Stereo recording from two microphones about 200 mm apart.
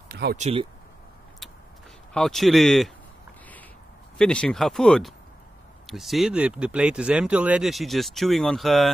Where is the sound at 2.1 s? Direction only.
Centre (ahead or behind).